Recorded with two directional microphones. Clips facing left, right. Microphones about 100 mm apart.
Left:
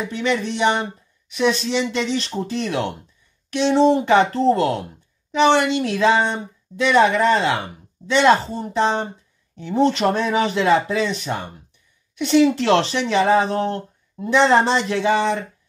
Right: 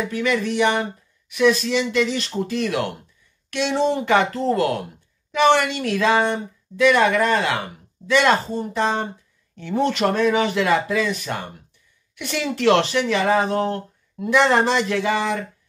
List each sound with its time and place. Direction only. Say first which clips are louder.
0.0 s speech: even; 25° left (ahead or behind)